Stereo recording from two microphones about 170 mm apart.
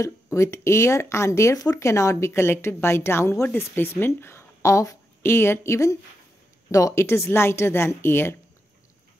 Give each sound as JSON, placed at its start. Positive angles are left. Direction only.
{"t": 0.0, "sound": "speech", "side_deg": 15}